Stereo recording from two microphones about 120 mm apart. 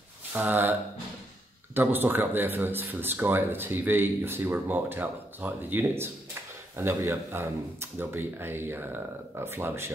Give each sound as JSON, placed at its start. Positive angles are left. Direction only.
{"t": 0.3, "sound": "speech", "side_deg": -15}
{"t": 1.8, "sound": "speech", "side_deg": -15}